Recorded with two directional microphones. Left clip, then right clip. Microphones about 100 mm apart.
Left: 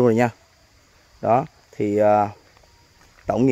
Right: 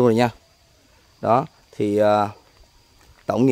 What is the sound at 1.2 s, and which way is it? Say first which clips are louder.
Speech: even; 20° right (ahead or behind).